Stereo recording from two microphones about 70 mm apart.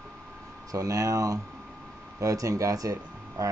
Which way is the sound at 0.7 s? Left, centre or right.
Right.